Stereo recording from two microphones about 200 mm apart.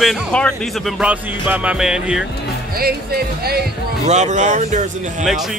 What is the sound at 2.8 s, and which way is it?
Speech, 50° right (ahead or behind).